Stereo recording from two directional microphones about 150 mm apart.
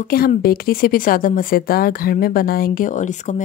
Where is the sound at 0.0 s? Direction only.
75° left (ahead or behind).